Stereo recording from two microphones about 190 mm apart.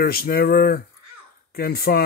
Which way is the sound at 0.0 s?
50° left (ahead or behind).